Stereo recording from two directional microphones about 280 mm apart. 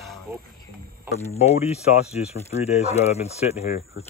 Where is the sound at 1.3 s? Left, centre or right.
Left.